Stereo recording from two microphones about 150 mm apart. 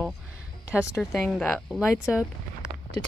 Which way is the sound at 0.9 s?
Centre (ahead or behind).